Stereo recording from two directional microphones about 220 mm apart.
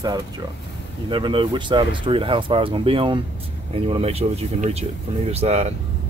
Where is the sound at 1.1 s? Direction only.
20° right (ahead or behind).